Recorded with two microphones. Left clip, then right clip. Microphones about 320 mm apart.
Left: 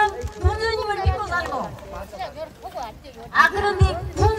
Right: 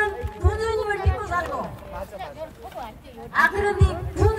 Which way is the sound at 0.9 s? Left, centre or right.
Left.